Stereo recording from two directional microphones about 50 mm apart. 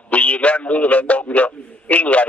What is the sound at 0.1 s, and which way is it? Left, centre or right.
A man's voice, left.